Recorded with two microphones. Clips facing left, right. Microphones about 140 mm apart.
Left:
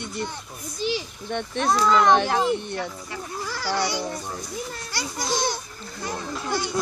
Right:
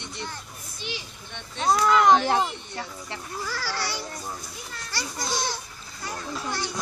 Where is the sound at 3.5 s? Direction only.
15° left (ahead or behind).